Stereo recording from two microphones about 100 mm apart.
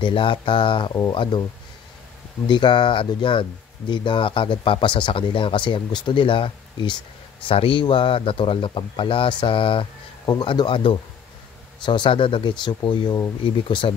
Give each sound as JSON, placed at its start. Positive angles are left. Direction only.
{"t": 0.0, "sound": "speech", "side_deg": 60}
{"t": 2.4, "sound": "speech", "side_deg": 50}